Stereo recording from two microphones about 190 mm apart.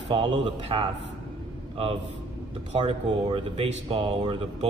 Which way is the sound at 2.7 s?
30° right (ahead or behind).